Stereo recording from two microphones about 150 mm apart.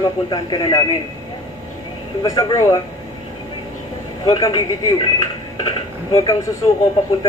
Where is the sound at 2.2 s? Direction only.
20° left (ahead or behind).